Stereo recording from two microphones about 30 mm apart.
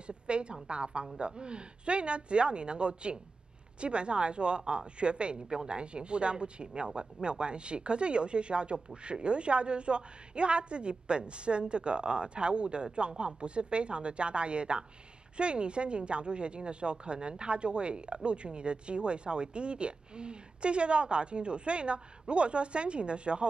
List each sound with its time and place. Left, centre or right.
0.0 s a woman's voice: right